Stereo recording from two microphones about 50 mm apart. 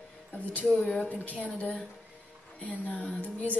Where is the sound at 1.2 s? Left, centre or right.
Left.